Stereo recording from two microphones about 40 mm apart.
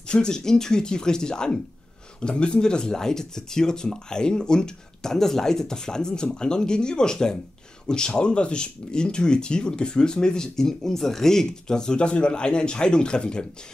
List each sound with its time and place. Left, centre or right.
0.1 s speech: centre